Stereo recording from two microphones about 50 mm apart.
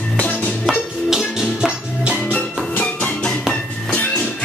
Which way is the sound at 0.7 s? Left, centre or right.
Centre.